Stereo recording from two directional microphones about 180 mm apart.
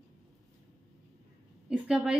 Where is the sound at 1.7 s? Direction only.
5° right (ahead or behind).